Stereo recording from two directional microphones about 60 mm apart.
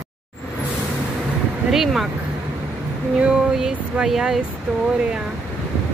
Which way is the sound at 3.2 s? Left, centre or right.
Centre.